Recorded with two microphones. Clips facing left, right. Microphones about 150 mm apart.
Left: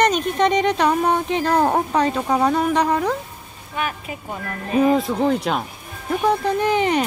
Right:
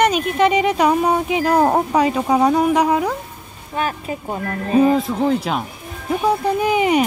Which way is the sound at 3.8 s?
35° right (ahead or behind).